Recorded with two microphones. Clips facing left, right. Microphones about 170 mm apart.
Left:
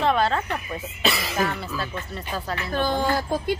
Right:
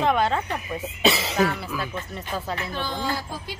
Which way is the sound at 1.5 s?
10° right (ahead or behind).